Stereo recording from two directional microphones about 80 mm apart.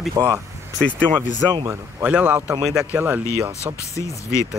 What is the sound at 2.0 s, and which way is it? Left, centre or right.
Speech, centre.